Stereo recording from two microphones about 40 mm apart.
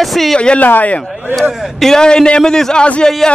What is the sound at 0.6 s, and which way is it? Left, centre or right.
Speech, left.